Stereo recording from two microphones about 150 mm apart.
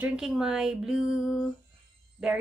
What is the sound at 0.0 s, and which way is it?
A woman's voice, 5° right (ahead or behind).